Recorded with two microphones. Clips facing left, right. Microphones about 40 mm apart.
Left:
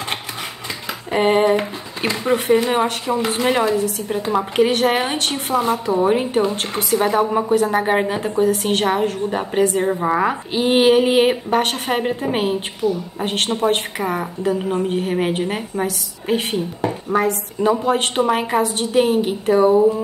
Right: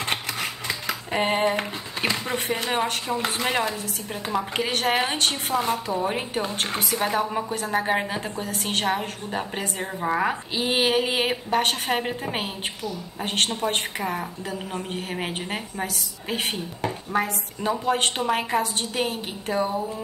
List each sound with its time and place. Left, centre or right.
1.1 s a woman's voice: centre
4.6 s speech: centre
5.3 s a woman's voice: centre
12.8 s speech: left
13.2 s a woman's voice: centre
14.8 s a woman's voice: centre
19.6 s speech: left